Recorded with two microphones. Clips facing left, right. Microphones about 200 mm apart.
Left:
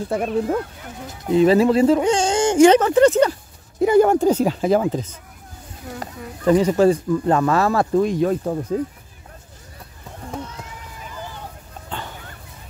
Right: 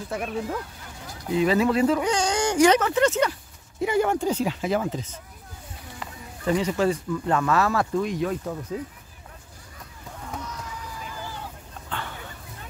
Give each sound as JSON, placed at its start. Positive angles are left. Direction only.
{"t": 0.1, "sound": "speech", "side_deg": 45}
{"t": 1.4, "sound": "speech", "side_deg": 30}